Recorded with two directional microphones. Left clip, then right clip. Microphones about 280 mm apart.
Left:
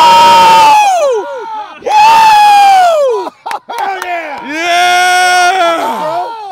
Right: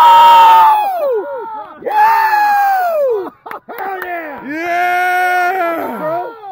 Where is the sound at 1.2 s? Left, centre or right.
Left.